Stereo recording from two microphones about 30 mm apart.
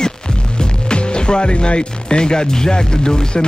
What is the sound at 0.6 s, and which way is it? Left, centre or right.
Speech, left.